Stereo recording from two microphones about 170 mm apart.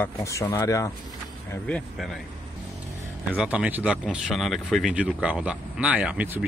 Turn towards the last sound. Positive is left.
turn(degrees=-5)  # may be behind; listen again after turning